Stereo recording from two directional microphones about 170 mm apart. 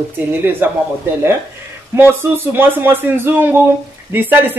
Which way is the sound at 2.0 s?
15° right (ahead or behind).